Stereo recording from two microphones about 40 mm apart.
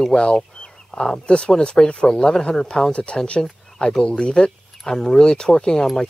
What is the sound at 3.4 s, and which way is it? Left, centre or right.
Speech, centre.